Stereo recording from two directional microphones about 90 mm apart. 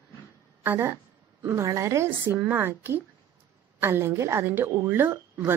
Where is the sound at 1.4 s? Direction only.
35° right (ahead or behind).